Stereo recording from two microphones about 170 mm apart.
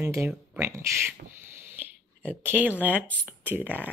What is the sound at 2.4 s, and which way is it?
Speech, 10° right (ahead or behind).